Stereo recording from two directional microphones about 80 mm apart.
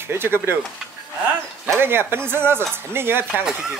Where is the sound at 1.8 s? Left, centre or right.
Right.